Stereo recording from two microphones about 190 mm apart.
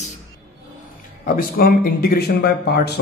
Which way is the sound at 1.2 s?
50° left (ahead or behind).